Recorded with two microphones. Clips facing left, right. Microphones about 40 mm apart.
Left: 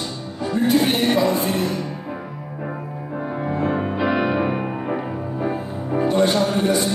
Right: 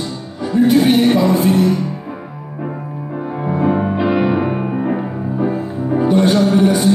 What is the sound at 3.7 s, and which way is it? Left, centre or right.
Music, centre.